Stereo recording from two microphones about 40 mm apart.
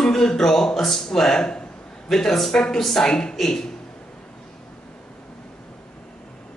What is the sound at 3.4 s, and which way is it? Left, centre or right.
Speech, centre.